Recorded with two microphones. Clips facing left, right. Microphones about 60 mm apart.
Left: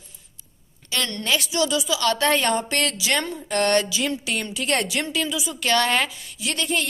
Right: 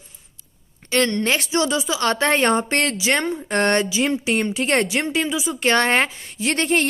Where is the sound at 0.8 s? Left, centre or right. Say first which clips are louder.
Right 7 dB; right.